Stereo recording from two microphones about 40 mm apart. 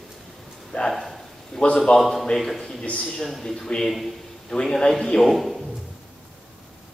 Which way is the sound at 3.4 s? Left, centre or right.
Centre.